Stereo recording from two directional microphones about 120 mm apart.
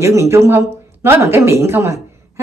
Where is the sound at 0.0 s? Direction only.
25° right (ahead or behind).